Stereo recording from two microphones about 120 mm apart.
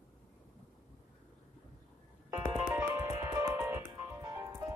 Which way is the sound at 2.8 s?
25° right (ahead or behind).